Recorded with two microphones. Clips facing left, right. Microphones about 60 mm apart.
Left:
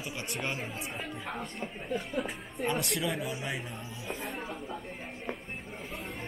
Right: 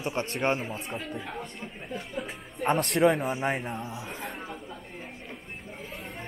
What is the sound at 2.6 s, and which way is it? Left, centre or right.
A man's voice, right.